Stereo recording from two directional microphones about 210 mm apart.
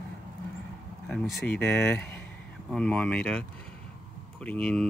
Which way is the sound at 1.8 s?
10° left (ahead or behind).